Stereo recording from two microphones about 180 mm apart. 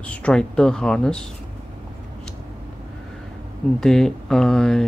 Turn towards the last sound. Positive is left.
turn(degrees=5)  # may be behind; listen again after turning